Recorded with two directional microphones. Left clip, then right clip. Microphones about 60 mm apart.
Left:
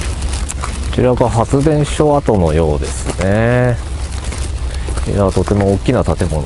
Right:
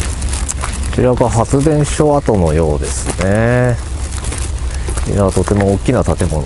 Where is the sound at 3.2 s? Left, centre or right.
Centre.